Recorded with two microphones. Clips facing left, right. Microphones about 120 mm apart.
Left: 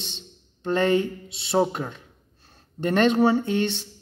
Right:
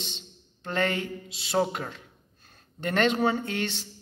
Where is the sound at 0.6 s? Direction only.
25° left (ahead or behind).